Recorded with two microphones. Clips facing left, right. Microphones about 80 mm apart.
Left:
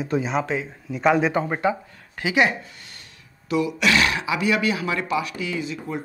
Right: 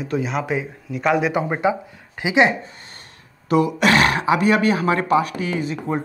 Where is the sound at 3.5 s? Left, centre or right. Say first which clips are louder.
Right 5 dB; right.